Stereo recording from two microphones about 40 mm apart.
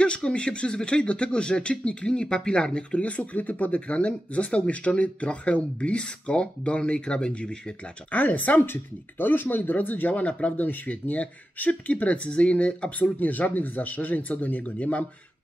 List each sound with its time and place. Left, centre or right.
0.0 s speech: left
3.0 s speech: left
8.1 s speech: left
9.2 s speech: left